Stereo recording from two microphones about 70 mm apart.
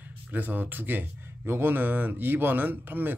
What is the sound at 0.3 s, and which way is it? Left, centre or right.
Speech, right.